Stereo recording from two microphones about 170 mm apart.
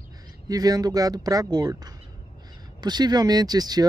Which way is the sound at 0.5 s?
20° right (ahead or behind).